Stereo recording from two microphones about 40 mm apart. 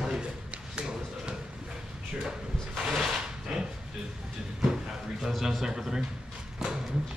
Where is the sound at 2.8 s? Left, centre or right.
Centre.